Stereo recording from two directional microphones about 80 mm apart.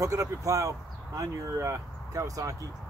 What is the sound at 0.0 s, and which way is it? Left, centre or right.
Speech, right.